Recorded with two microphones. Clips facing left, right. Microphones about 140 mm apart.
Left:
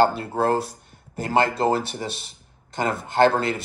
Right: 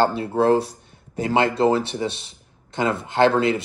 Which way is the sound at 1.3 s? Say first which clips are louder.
Right 2 dB; 40° left (ahead or behind).